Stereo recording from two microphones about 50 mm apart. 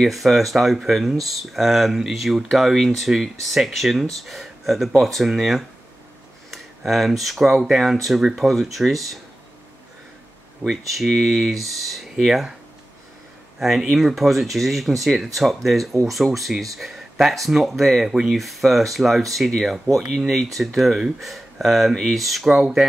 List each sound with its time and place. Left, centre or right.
0.0 s speech: centre
10.7 s speech: centre
13.6 s speech: centre